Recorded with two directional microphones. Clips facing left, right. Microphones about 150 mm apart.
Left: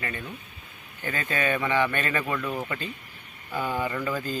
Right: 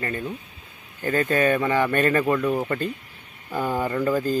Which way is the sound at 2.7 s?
50° right (ahead or behind).